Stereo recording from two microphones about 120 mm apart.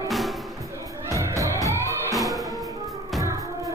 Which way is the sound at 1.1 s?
25° right (ahead or behind).